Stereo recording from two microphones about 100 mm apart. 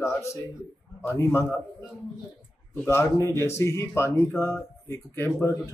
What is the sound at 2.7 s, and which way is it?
Speech, 25° left (ahead or behind).